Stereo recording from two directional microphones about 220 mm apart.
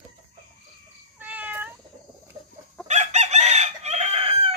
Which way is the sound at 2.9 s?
30° right (ahead or behind).